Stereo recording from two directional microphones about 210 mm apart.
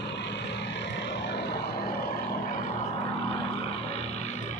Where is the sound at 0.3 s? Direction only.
55° left (ahead or behind).